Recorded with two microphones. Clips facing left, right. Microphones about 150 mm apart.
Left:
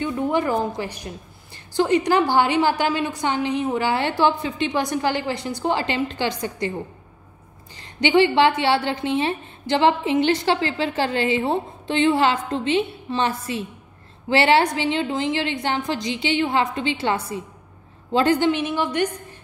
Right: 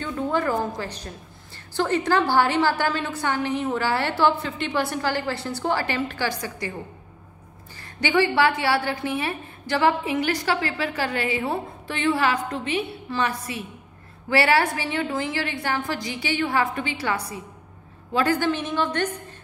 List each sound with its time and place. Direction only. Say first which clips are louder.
0.0 s a woman's voice: left 3 dB; 15° left (ahead or behind)
7.7 s a woman's voice: left 4 dB; 20° left (ahead or behind)